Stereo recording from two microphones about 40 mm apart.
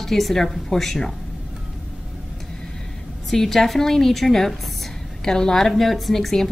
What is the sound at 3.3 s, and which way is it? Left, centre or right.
Speech, centre.